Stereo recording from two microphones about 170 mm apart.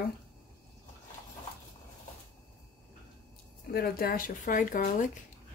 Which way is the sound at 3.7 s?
60° left (ahead or behind).